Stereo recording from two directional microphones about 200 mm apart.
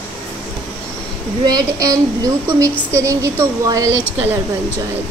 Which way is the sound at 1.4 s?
20° right (ahead or behind).